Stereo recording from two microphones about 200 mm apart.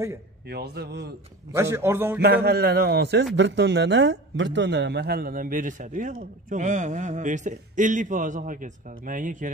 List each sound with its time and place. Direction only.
0.5 s a man's voice: 55° right (ahead or behind)
1.5 s a man's voice: 10° right (ahead or behind)
2.2 s a man's voice: 55° right (ahead or behind)